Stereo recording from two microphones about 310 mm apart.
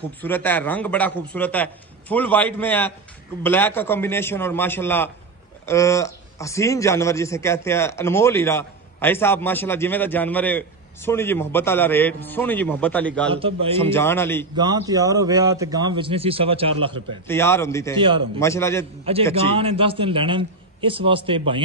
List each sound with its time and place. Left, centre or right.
0.2 s a man's voice: centre
14.6 s a man's voice: centre
17.3 s a man's voice: centre
17.9 s a man's voice: centre
18.4 s a man's voice: centre
19.3 s a man's voice: centre